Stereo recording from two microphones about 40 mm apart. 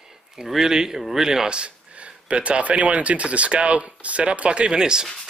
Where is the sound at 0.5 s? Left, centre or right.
Centre.